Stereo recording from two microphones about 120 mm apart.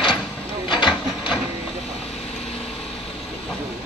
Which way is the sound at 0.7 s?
40° left (ahead or behind).